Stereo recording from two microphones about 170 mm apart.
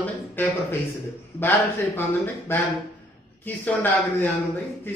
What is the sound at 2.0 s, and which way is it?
Speech, 15° left (ahead or behind).